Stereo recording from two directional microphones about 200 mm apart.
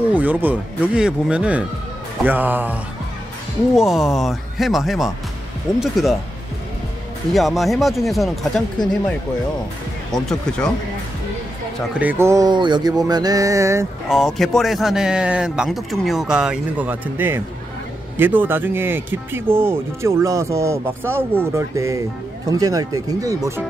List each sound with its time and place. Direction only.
0.1 s speech: 10° right (ahead or behind)
7.3 s speech: centre (ahead or behind)
10.1 s speech: centre (ahead or behind)
12.0 s speech: 10° right (ahead or behind)
14.0 s speech: centre (ahead or behind); by 23.6 s 15° right (ahead or behind)